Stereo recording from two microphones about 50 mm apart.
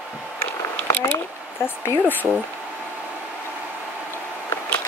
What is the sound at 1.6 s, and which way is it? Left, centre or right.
Speech, left.